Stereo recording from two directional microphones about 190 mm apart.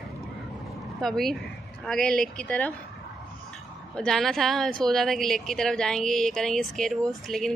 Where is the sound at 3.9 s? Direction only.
5° left (ahead or behind).